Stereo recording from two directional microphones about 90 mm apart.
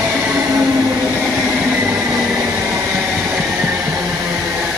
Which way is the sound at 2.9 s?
10° right (ahead or behind).